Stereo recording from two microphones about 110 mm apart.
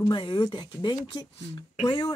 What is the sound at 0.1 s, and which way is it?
A woman's voice, 40° left (ahead or behind).